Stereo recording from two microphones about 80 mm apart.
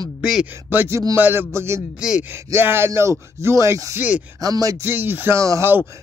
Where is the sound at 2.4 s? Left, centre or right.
Right.